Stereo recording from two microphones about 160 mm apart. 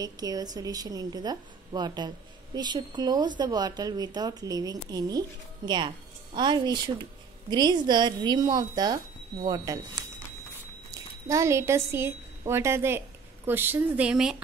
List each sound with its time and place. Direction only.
0.0 s a woman's voice: 25° right (ahead or behind); by 14.3 s 5° right (ahead or behind)